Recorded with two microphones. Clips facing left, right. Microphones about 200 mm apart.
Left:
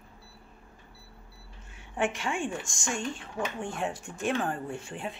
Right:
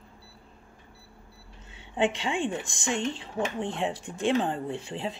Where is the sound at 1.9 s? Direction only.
20° right (ahead or behind).